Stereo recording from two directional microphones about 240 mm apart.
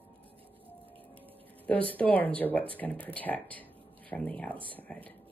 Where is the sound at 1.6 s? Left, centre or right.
Centre.